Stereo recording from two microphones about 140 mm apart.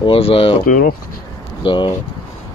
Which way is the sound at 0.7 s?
90° left.